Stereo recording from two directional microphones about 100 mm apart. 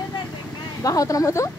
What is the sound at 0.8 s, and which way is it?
Speech, 35° left (ahead or behind).